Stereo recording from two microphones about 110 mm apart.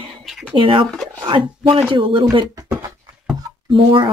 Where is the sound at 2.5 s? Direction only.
30° right (ahead or behind).